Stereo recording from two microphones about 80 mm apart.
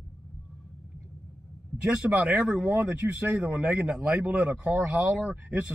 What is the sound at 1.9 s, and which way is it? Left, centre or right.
Speech, centre.